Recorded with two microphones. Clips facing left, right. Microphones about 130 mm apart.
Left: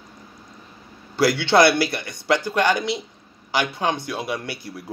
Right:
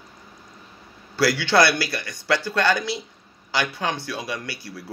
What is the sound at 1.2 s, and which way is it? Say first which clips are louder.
Speech: left 3 dB; 20° left (ahead or behind).